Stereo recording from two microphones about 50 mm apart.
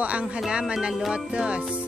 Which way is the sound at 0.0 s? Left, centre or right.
Right.